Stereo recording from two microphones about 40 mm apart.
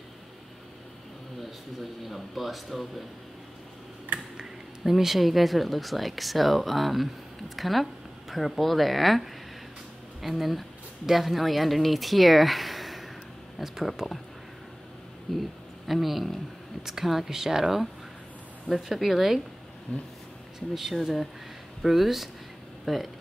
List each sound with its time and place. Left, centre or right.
2.0 s speech: centre
4.4 s speech: centre
15.3 s speech: centre
15.9 s speech: centre
20.5 s speech: centre